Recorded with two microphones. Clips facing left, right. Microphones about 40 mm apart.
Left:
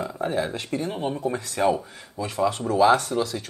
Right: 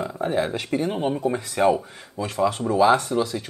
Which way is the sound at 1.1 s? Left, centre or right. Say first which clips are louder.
Right 3 dB; centre.